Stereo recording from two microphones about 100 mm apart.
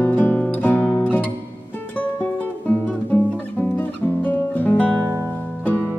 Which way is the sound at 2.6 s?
15° left (ahead or behind).